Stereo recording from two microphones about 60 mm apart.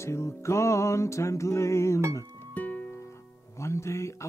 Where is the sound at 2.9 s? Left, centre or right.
Left.